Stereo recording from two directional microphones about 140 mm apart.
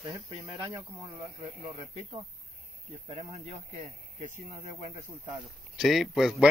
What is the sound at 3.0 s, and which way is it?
Speech, 45° right (ahead or behind).